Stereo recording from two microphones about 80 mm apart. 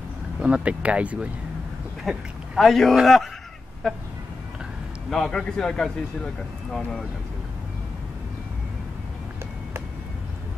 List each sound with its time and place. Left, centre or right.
0.4 s speech: centre
2.0 s speech: centre
5.1 s a man's voice: centre